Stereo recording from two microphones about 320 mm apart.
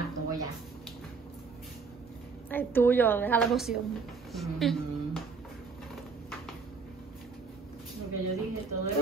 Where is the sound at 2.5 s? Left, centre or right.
Centre.